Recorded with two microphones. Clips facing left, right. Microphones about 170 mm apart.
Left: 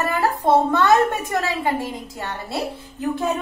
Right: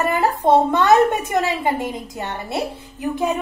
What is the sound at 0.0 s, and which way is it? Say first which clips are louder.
A woman's voice: right 2 dB; 20° right (ahead or behind).